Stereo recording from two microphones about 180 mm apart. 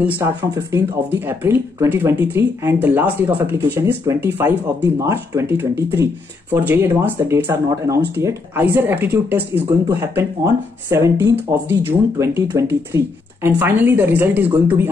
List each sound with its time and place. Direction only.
0.0 s speech: 15° right (ahead or behind)
9.7 s speech: 20° right (ahead or behind)